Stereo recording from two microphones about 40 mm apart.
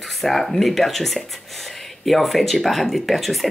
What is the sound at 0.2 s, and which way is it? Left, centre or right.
Speech, centre.